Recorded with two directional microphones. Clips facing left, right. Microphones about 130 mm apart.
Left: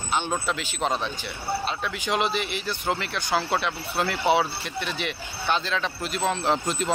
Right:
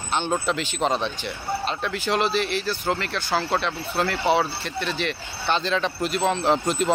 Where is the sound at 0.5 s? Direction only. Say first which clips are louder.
Right 3 dB; 5° left (ahead or behind).